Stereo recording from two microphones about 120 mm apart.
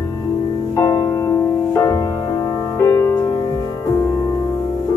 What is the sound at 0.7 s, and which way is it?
Music, 35° left (ahead or behind).